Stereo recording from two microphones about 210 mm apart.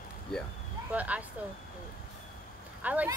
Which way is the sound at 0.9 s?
5° right (ahead or behind).